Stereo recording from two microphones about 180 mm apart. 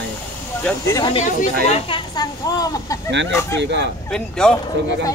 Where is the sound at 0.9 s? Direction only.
25° left (ahead or behind).